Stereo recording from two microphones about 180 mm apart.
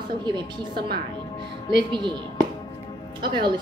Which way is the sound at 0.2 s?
25° right (ahead or behind).